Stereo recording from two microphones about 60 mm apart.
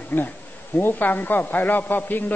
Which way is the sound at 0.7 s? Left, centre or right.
Left.